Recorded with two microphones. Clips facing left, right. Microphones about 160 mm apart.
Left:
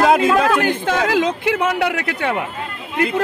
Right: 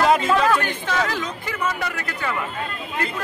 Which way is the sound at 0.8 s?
70° left (ahead or behind).